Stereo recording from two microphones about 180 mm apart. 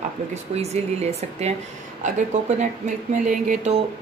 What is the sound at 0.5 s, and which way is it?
Speech, 35° right (ahead or behind).